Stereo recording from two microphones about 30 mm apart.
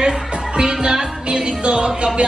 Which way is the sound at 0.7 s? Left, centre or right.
Right.